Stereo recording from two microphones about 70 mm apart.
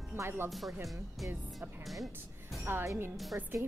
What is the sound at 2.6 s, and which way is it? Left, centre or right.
Speech, right.